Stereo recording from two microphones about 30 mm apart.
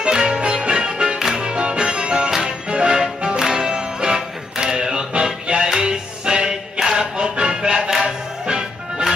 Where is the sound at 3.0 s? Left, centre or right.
Right.